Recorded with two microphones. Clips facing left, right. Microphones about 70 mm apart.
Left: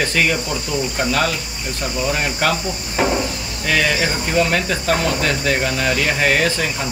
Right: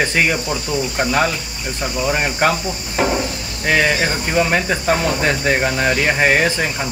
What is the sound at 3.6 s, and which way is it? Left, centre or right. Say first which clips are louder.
Speech: right 2 dB; right.